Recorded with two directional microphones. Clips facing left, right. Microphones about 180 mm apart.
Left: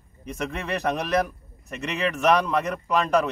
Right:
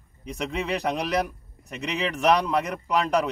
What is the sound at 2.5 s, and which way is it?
Speech, 10° right (ahead or behind).